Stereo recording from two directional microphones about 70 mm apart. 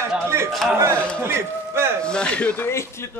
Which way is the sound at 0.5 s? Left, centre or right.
Centre.